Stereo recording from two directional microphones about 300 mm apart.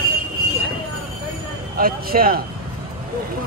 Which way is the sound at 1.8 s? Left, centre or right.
Right.